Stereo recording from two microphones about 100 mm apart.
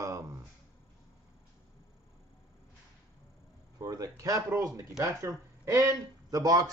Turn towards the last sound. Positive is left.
turn(degrees=-40)  # may be behind; listen again after turning